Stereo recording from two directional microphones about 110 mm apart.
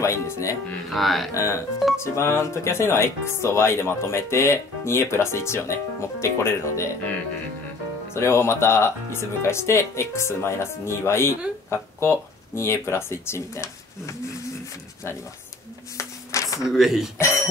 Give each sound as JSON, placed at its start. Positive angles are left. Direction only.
{"t": 0.0, "sound": "speech", "side_deg": 25}
{"t": 0.8, "sound": "speech", "side_deg": 0}
{"t": 1.3, "sound": "speech", "side_deg": 25}
{"t": 8.1, "sound": "speech", "side_deg": 25}
{"t": 16.0, "sound": "a sound", "side_deg": 30}
{"t": 16.5, "sound": "speech", "side_deg": -5}
{"t": 17.2, "sound": "speech", "side_deg": 25}